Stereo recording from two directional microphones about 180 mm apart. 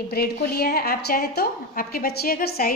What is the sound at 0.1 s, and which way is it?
A woman's voice, 60° left (ahead or behind).